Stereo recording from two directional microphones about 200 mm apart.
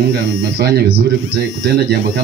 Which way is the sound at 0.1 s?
55° right (ahead or behind).